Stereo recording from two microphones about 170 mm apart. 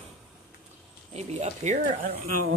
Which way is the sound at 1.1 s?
40° right (ahead or behind).